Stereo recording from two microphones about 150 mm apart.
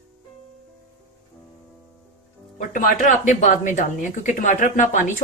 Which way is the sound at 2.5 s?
60° left (ahead or behind).